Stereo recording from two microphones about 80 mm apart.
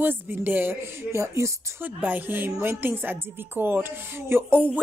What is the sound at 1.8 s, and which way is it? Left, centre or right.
A woman's voice, right.